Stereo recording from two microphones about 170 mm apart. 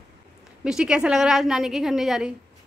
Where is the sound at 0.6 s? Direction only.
5° right (ahead or behind).